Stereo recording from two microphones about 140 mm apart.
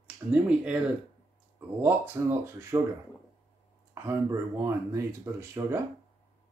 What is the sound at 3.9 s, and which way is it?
Speech, 20° right (ahead or behind).